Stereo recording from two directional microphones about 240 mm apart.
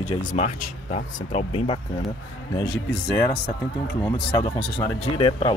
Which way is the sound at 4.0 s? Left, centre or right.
Left.